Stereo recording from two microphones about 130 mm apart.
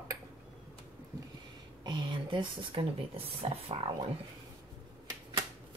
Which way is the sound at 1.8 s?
35° right (ahead or behind).